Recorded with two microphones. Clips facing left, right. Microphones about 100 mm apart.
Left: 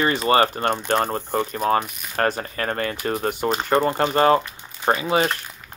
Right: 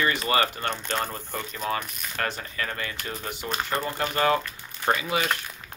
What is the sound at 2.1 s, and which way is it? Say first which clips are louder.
Speech: left 8 dB; 45° left (ahead or behind).